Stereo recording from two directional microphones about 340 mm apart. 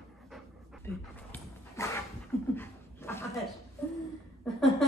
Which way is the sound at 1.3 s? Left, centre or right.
Centre.